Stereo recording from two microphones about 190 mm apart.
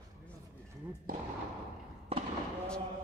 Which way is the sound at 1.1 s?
50° right (ahead or behind).